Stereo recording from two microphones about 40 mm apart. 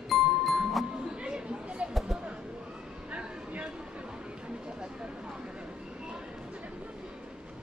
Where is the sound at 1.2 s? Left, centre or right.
Right.